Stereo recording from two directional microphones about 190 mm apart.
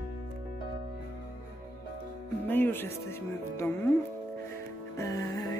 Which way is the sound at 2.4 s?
10° left (ahead or behind).